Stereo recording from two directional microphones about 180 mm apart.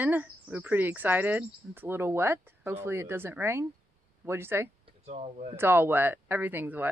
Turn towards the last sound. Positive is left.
turn(degrees=-10)  # may be behind; listen again after turning